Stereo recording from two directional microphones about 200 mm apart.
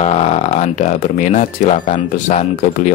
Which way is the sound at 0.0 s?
30° left (ahead or behind).